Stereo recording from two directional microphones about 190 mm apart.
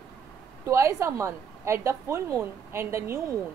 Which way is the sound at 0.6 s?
15° right (ahead or behind).